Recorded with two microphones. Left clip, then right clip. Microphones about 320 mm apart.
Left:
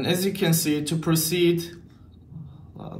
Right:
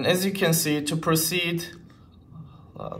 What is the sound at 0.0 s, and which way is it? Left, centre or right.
Speech, right.